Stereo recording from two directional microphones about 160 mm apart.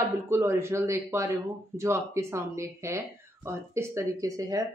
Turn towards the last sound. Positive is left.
turn(degrees=-20)  # may be behind; listen again after turning